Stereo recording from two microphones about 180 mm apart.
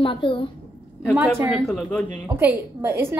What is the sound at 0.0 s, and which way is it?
Speech, 30° left (ahead or behind).